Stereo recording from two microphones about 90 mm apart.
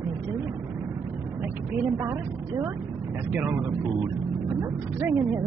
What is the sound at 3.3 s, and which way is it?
Speech, 15° right (ahead or behind).